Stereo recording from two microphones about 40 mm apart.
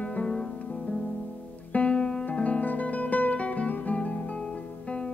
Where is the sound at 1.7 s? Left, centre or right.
Left.